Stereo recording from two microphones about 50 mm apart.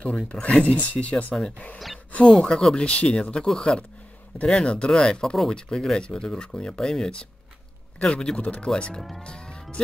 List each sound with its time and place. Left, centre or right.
0.0 s speech: left
2.2 s speech: centre
9.2 s vehicle: left